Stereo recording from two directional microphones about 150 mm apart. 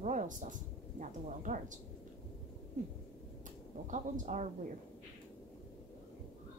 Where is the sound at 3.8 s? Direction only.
55° right (ahead or behind).